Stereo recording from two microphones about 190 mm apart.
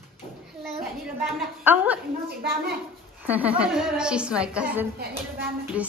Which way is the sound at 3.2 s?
10° right (ahead or behind).